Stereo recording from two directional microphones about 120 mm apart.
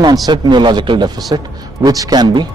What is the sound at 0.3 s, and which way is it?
Speech, 40° right (ahead or behind).